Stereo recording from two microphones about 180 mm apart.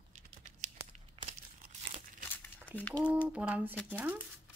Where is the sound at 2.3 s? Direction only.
10° left (ahead or behind).